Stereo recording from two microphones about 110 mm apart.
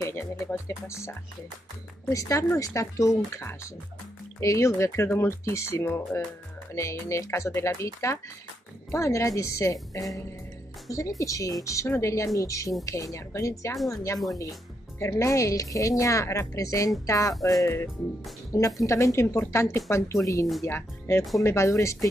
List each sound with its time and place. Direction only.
0.0 s speech: 15° left (ahead or behind)
18.8 s speech: 30° left (ahead or behind)